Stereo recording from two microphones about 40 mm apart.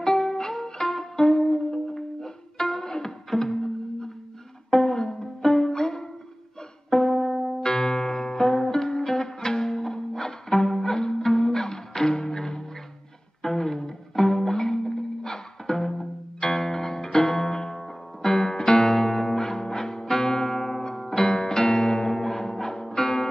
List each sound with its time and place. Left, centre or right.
0.0 s music: centre
7.6 s music: centre
18.7 s music: left
18.9 s music: centre